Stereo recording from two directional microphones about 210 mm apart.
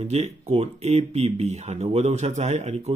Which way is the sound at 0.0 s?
30° right (ahead or behind).